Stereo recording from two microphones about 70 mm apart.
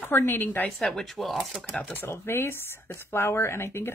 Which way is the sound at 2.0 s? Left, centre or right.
Left.